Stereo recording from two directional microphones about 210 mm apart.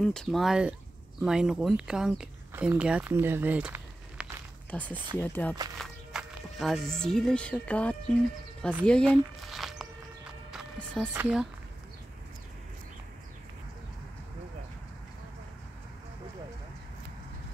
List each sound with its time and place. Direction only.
0.0 s speech: 5° left (ahead or behind)
4.6 s speech: 5° left (ahead or behind)